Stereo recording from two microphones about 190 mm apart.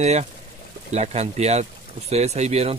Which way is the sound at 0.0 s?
35° right (ahead or behind).